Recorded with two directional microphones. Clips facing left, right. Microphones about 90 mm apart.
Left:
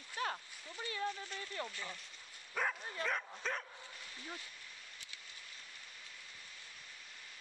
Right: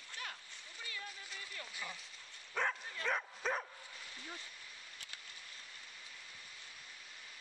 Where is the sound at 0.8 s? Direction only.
35° left (ahead or behind).